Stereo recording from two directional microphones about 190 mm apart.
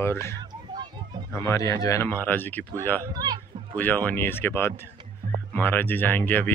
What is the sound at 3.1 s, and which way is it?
Speech, 20° right (ahead or behind).